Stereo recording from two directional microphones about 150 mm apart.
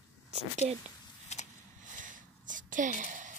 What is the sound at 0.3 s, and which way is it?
Speech, 45° right (ahead or behind).